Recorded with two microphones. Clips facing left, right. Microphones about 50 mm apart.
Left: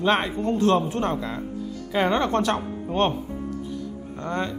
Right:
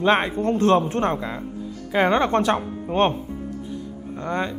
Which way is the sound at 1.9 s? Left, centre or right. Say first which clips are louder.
Right 3 dB; centre.